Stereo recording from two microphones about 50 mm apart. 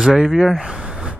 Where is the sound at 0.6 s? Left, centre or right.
Centre.